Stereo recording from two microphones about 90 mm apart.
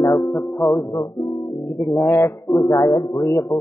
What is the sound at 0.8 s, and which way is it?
Speech, 35° left (ahead or behind).